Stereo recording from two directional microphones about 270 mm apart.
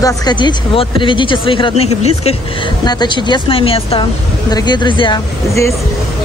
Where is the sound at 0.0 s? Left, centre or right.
Centre.